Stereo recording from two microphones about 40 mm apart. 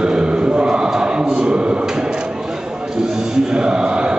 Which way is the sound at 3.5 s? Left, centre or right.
Right.